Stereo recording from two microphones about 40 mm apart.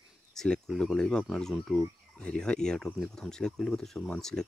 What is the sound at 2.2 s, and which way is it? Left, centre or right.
Speech, left.